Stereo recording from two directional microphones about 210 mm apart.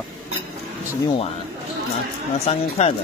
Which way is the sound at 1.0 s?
25° left (ahead or behind).